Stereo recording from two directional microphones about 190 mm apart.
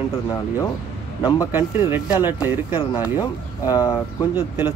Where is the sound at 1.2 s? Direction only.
15° left (ahead or behind).